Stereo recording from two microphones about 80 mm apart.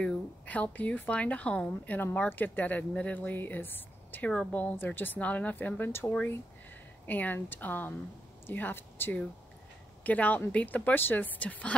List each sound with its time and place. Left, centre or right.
0.0 s a woman's voice: centre